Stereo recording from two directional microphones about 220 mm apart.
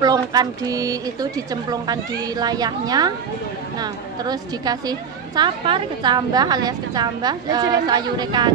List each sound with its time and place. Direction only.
0.0 s a woman's voice: 15° right (ahead or behind)